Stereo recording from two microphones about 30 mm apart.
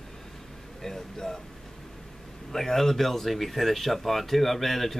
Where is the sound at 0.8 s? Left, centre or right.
Centre.